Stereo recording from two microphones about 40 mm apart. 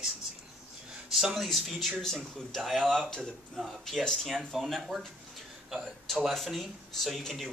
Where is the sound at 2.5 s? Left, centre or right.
Centre.